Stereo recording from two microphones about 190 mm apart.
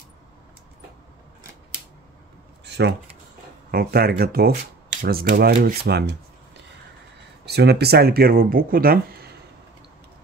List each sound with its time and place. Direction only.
2.6 s a sound: 60° right (ahead or behind)
3.7 s speech: 55° right (ahead or behind)
5.9 s speech: 60° right (ahead or behind)
7.4 s speech: 60° right (ahead or behind)